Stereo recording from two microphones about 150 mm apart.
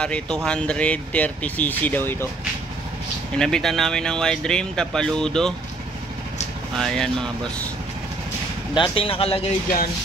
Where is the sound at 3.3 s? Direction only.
5° left (ahead or behind).